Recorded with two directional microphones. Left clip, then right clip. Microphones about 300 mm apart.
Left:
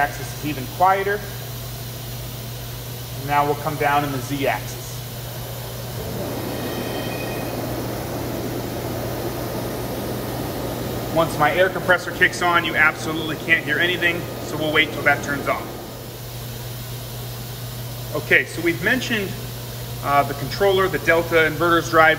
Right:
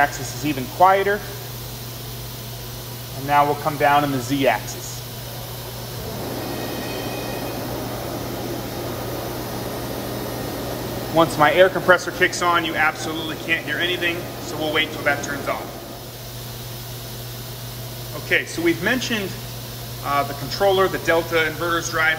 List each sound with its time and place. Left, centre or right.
0.4 s speech: right
3.3 s speech: right
11.1 s speech: right; by 15.5 s centre
18.7 s speech: centre